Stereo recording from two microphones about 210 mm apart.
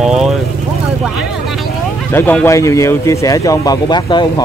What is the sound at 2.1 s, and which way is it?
Speech, 10° left (ahead or behind).